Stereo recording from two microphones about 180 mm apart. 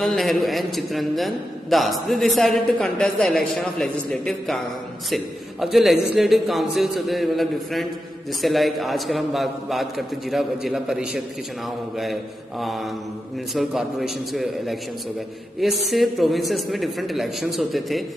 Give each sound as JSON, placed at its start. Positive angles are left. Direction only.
{"t": 0.0, "sound": "a man's voice", "side_deg": 0}